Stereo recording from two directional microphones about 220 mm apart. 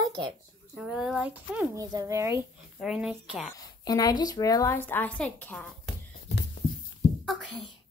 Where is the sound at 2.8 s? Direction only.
Centre (ahead or behind).